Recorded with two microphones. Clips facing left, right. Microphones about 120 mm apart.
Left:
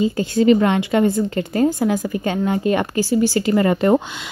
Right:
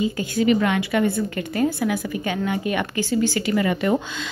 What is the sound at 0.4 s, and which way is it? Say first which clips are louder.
A woman's voice: left 5 dB; 30° left (ahead or behind).